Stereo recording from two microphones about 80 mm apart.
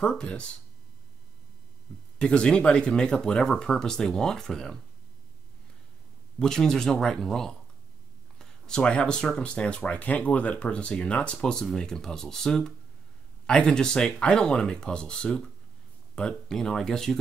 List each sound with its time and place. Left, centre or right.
0.0 s speech: centre
2.1 s speech: centre
6.4 s speech: centre